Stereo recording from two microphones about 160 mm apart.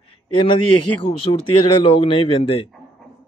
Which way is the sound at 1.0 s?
35° left (ahead or behind).